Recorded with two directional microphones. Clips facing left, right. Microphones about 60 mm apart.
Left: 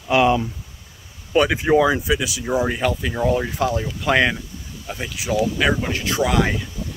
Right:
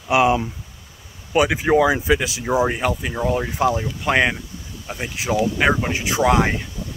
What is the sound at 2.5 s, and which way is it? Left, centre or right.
Speech, centre.